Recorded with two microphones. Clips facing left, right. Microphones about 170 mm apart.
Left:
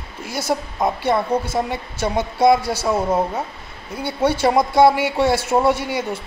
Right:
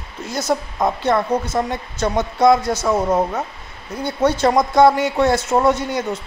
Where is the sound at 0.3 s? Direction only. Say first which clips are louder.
Right 2 dB; 20° right (ahead or behind).